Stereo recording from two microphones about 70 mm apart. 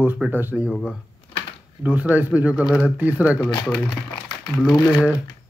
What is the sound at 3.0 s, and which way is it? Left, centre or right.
Speech, right.